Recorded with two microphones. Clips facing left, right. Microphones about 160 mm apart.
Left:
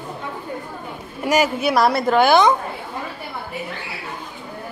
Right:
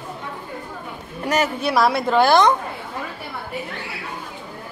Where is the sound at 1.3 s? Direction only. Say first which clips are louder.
Left 3 dB; 10° left (ahead or behind).